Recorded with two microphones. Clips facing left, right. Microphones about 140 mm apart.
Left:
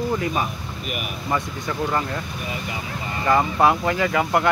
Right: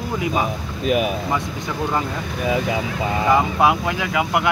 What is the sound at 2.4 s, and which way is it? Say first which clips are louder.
Speech: right 9 dB; 90° right.